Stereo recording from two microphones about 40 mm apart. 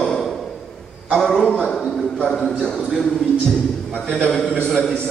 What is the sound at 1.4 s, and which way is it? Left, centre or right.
Speech, left.